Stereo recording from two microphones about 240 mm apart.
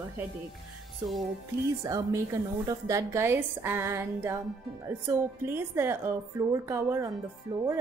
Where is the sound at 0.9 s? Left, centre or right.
Centre.